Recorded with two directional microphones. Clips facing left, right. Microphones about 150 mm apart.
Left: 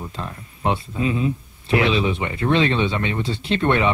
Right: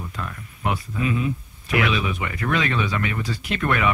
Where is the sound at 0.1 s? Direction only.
30° left (ahead or behind).